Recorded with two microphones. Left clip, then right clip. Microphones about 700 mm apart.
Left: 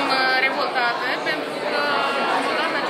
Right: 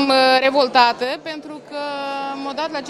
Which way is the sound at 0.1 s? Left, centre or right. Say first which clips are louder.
Right 7 dB; right.